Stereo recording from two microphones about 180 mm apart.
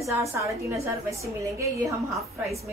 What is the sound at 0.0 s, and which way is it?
A woman's voice, 15° right (ahead or behind).